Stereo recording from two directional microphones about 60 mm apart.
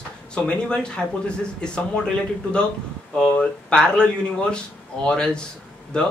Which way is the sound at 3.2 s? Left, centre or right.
Centre.